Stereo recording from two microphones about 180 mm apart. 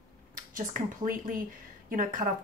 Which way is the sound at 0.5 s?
50° right (ahead or behind).